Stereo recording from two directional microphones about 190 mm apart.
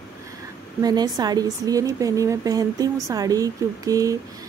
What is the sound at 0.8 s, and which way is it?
A woman's voice, 20° right (ahead or behind).